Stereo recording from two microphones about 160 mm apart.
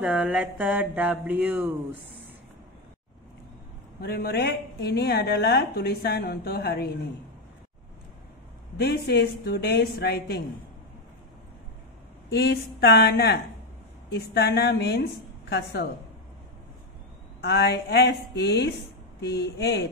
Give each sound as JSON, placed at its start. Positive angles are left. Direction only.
{"t": 0.0, "sound": "a sound", "side_deg": -5}
{"t": 4.0, "sound": "a woman's voice", "side_deg": 80}
{"t": 8.7, "sound": "a woman's voice", "side_deg": 90}
{"t": 12.3, "sound": "a woman's voice", "side_deg": 90}
{"t": 17.4, "sound": "a woman's voice", "side_deg": 90}